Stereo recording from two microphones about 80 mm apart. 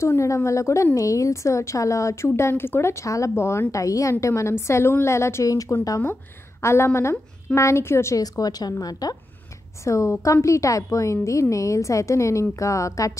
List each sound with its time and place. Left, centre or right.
0.0 s a woman's voice: left
8.2 s a woman's voice: left
9.8 s a woman's voice: left